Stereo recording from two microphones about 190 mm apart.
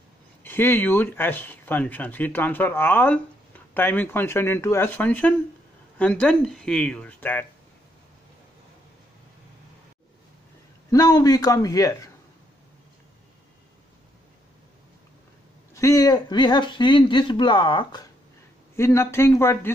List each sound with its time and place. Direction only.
0.4 s speech: 10° left (ahead or behind)
10.9 s speech: 20° left (ahead or behind)
15.7 s speech: 20° left (ahead or behind)
18.8 s speech: 15° left (ahead or behind)